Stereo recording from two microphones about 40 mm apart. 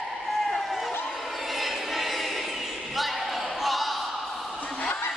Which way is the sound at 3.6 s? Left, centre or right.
Centre.